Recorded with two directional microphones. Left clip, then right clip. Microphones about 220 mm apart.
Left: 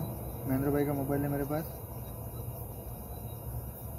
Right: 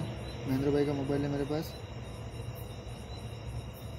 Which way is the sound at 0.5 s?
Centre (ahead or behind).